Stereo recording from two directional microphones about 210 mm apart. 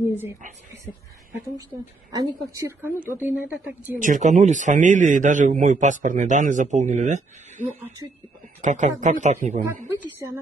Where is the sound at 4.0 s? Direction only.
35° right (ahead or behind).